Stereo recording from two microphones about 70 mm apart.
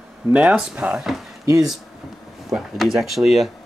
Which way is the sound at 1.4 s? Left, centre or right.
Right.